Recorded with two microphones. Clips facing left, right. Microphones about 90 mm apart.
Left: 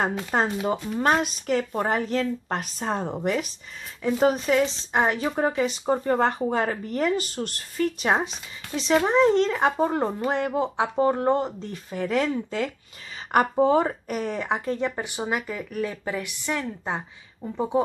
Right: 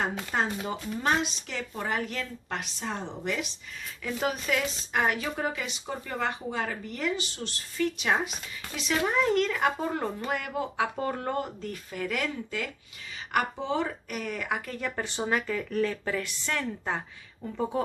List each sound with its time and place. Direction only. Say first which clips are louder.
0.0 s a woman's voice: left 5 dB; 45° left (ahead or behind)
13.3 s speech: left 9 dB; 45° left (ahead or behind); by 17.8 s 15° left (ahead or behind)